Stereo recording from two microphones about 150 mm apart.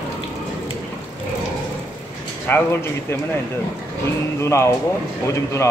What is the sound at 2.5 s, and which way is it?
Speech, 15° left (ahead or behind).